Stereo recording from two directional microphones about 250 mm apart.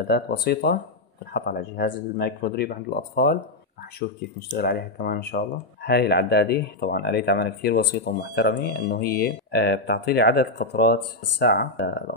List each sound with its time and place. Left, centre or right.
0.1 s speech: left